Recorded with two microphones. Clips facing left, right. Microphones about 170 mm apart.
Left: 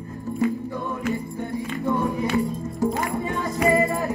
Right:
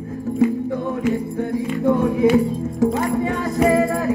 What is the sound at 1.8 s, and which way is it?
Music, 65° right (ahead or behind).